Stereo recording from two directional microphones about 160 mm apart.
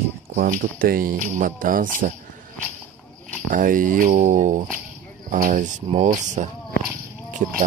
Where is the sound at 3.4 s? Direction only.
55° right (ahead or behind).